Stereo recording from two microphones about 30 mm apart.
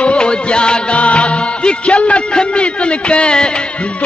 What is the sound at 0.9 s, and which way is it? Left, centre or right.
Music, left.